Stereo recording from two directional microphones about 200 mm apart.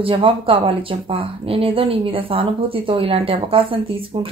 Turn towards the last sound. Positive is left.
turn(degrees=-25)  # may be behind; listen again after turning